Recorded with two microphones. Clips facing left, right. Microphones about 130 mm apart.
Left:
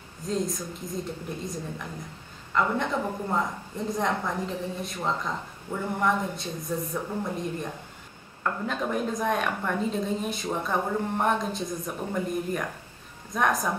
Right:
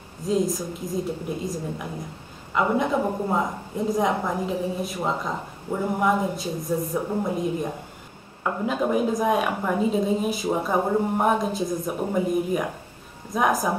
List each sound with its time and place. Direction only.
0.3 s a woman's voice: 5° right (ahead or behind)
2.5 s a woman's voice: 15° right (ahead or behind)
7.0 s a woman's voice: 15° right (ahead or behind)